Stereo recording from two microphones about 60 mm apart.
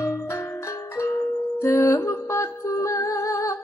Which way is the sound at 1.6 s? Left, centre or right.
Left.